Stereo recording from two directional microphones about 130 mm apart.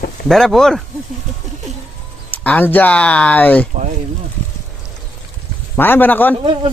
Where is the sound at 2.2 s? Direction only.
15° left (ahead or behind).